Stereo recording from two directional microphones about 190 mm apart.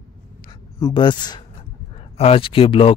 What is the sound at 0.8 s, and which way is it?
Speech, 25° left (ahead or behind).